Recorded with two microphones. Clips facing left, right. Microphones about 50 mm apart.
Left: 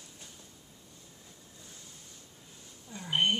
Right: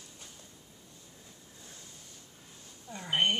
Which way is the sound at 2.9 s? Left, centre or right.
Right.